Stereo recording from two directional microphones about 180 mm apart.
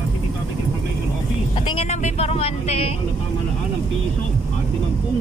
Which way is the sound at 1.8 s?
35° left (ahead or behind).